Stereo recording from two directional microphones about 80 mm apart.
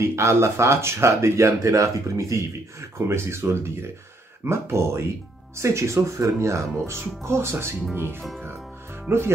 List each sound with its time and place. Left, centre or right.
0.0 s speech: right